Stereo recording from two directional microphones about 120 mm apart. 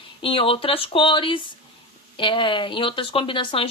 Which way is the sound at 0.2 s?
50° left (ahead or behind).